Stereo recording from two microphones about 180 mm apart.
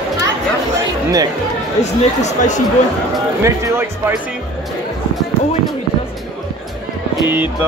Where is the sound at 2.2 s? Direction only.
40° left (ahead or behind).